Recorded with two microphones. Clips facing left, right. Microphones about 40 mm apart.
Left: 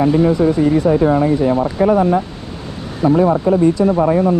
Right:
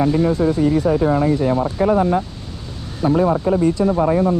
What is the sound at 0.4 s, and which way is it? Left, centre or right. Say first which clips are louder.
Speech: left 3 dB; left.